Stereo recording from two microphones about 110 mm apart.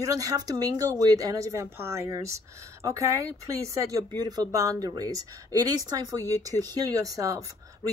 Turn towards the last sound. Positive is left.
turn(degrees=-30)  # may be behind; listen again after turning